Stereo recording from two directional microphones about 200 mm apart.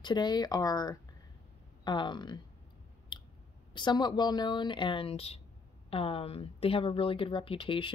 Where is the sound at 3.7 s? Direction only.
20° left (ahead or behind).